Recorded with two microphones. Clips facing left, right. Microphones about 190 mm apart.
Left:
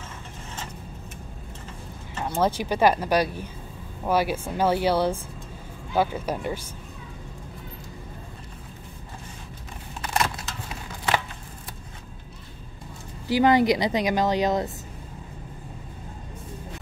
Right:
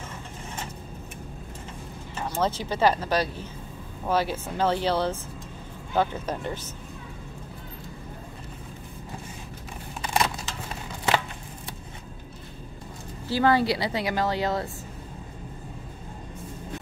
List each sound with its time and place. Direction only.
2.3 s a woman's voice: 10° left (ahead or behind)
10.0 s a sound: centre (ahead or behind)
13.3 s a woman's voice: 15° left (ahead or behind)